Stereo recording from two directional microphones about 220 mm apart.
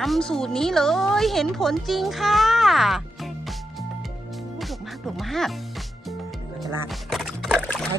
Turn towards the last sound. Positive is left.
turn(degrees=0)  # may be behind; listen again after turning